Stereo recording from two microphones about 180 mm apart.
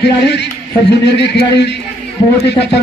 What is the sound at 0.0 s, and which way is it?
A man's voice, 70° left (ahead or behind).